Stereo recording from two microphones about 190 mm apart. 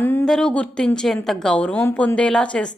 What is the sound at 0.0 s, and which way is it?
A woman's voice, 5° left (ahead or behind).